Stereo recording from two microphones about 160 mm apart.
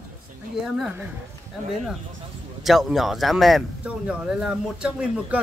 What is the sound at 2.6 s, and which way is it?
Speech, centre (ahead or behind).